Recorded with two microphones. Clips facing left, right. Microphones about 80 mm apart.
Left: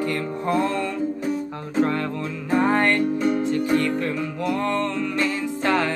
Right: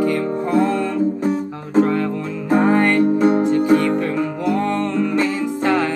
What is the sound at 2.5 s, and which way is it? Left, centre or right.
Music, centre.